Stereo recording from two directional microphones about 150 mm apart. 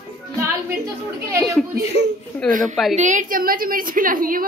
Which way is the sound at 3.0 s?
55° right (ahead or behind).